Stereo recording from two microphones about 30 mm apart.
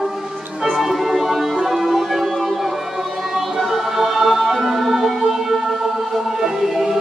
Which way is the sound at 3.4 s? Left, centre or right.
Centre.